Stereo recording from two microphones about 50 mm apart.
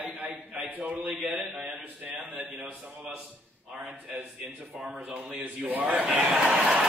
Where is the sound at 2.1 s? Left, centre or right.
Right.